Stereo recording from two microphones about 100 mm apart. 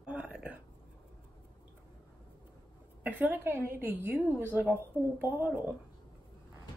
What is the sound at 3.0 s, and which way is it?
A woman's voice, 15° right (ahead or behind).